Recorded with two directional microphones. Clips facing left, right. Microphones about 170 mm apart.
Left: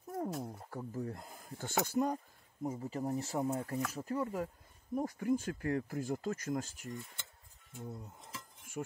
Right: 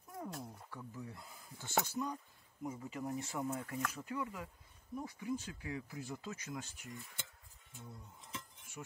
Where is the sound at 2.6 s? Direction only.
35° left (ahead or behind).